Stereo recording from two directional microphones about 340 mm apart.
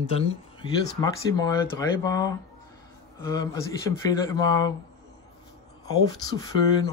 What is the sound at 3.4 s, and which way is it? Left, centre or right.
Speech, centre.